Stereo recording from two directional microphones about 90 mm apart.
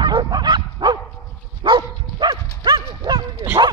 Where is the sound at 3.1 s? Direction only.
65° right (ahead or behind).